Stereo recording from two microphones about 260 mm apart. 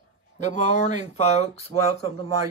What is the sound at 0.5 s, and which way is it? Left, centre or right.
Speech, left.